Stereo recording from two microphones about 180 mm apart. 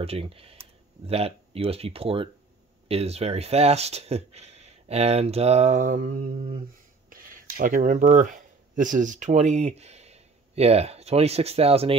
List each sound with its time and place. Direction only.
0.0 s speech: 30° right (ahead or behind)